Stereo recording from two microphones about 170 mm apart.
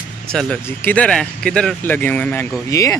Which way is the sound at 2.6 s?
20° left (ahead or behind).